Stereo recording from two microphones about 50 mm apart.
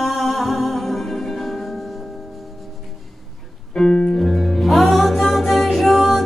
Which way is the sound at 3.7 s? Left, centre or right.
Centre.